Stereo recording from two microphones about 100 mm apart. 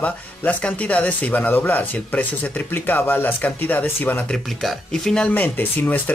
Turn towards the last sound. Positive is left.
turn(degrees=15)  # may be behind; listen again after turning